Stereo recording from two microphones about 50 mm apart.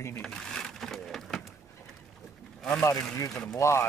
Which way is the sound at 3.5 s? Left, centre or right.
Left.